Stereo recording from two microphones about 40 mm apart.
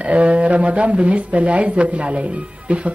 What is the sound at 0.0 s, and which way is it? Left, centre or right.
Speech, right.